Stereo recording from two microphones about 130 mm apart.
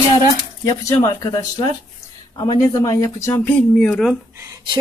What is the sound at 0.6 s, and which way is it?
Speech, 25° left (ahead or behind).